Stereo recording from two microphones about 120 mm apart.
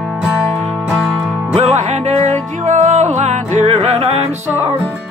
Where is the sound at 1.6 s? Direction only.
70° right (ahead or behind).